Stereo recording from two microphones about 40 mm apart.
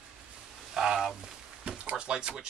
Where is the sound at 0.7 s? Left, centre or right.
Centre.